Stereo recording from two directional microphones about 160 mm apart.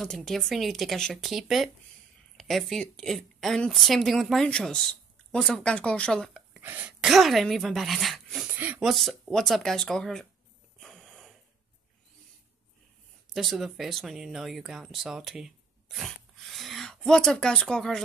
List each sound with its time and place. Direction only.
0.0 s a woman's voice: 5° left (ahead or behind)
6.6 s speech: 10° right (ahead or behind)
8.5 s a sound: 10° right (ahead or behind)
8.8 s speech: centre (ahead or behind)
10.8 s mechanisms: centre (ahead or behind)
13.3 s speech: centre (ahead or behind)